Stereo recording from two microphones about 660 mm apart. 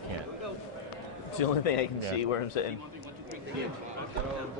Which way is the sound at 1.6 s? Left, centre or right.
Left.